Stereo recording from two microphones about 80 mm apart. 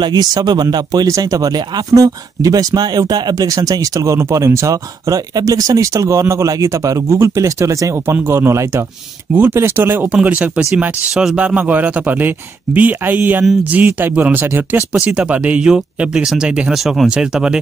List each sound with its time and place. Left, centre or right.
0.0 s speech: right
10.1 s speech: centre